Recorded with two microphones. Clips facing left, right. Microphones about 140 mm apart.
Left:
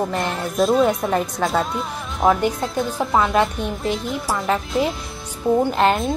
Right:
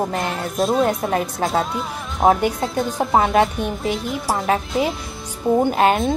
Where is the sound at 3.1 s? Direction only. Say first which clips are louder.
Right 2 dB; 50° right (ahead or behind).